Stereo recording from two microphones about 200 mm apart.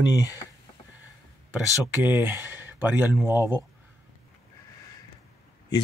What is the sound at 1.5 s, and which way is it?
Speech, 10° right (ahead or behind).